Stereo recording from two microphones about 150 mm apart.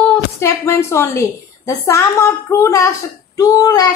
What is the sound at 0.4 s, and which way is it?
A woman's voice, 20° left (ahead or behind).